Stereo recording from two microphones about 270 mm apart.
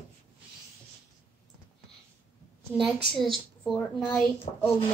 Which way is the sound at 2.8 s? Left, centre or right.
Centre.